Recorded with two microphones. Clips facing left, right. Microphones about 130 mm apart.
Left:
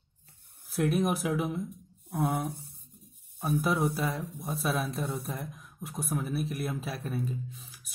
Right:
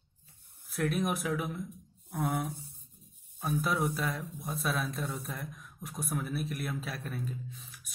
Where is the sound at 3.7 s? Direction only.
60° left (ahead or behind).